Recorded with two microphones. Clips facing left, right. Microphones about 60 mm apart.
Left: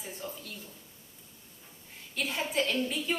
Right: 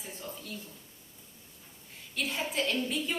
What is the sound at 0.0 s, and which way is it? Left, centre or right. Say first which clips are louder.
Speech: left 2 dB; centre.